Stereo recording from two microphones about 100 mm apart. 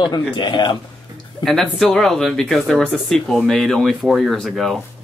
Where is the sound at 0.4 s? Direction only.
50° left (ahead or behind).